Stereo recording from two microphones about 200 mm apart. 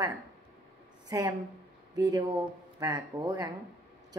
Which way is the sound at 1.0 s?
20° right (ahead or behind).